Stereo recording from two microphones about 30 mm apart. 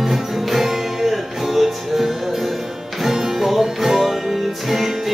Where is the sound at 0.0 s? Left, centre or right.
Centre.